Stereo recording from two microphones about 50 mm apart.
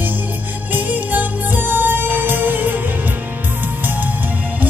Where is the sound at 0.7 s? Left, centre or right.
Right.